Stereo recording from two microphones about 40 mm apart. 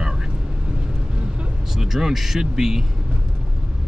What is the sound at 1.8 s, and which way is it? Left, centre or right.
Speech, centre.